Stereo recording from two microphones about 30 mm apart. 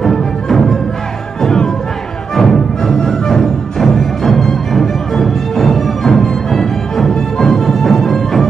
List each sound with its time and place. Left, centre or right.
0.0 s music: centre
2.3 s music: centre